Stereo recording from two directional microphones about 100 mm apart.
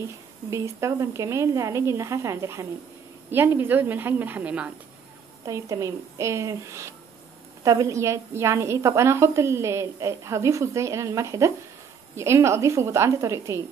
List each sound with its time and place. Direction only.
0.0 s a woman's voice: 30° right (ahead or behind)
5.4 s a woman's voice: 30° right (ahead or behind)